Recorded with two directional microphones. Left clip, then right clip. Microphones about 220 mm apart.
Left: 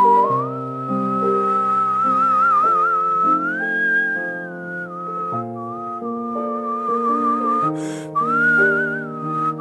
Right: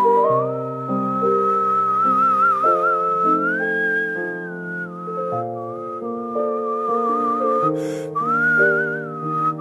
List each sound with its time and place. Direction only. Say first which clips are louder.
0.0 s music: left 1 dB; 25° left (ahead or behind)
6.7 s music: left 4 dB; 15° left (ahead or behind)
8.2 s whistling: left 1 dB; 20° left (ahead or behind)